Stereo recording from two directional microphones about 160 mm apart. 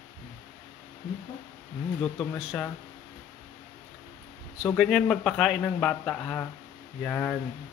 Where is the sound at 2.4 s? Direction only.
5° right (ahead or behind).